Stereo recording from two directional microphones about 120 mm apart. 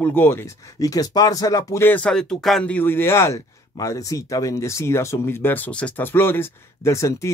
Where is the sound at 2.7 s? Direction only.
15° left (ahead or behind).